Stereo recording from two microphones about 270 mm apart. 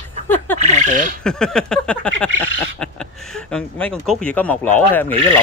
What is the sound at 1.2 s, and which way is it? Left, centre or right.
Speech, centre.